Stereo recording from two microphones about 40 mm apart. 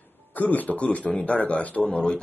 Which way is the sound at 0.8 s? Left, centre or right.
Left.